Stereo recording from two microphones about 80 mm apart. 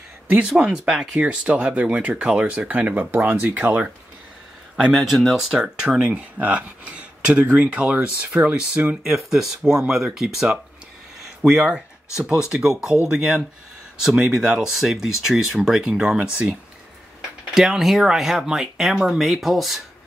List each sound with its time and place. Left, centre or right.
0.5 s speech: centre
4.7 s speech: centre
5.6 s speech: centre
17.6 s speech: centre